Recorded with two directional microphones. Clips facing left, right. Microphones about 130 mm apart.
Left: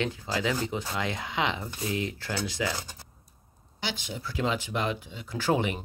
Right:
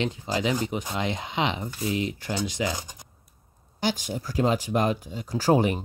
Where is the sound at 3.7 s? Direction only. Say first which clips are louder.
Right 7 dB; 45° right (ahead or behind).